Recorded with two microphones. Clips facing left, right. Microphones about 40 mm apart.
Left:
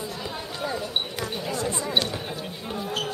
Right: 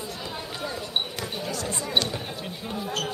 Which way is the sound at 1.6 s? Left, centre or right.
Centre.